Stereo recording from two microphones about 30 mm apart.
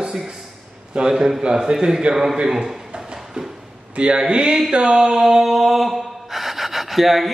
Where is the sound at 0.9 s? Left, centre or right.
Right.